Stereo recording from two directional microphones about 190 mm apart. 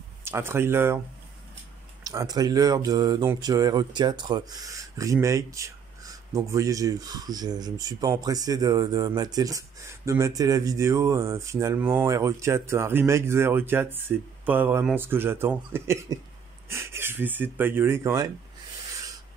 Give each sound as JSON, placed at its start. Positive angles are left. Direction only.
{"t": 0.2, "sound": "speech", "side_deg": -10}
{"t": 2.0, "sound": "speech", "side_deg": -20}